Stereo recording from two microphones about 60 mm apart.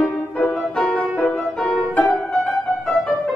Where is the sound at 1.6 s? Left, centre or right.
Centre.